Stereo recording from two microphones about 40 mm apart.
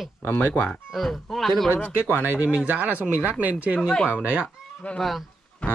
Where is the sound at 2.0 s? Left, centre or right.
Right.